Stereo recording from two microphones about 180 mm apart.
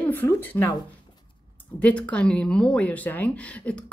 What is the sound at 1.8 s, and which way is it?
Speech, 5° left (ahead or behind).